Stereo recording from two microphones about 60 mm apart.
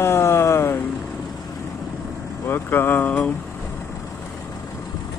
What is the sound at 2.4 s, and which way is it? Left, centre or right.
Speech, left.